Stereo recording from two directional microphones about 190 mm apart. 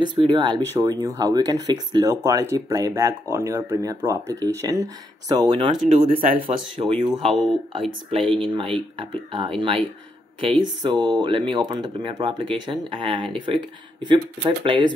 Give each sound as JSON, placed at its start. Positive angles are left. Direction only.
{"t": 0.0, "sound": "speech", "side_deg": -25}
{"t": 5.9, "sound": "speech", "side_deg": -45}
{"t": 6.4, "sound": "speech", "side_deg": -30}
{"t": 8.1, "sound": "speech", "side_deg": -30}
{"t": 10.8, "sound": "speech", "side_deg": -25}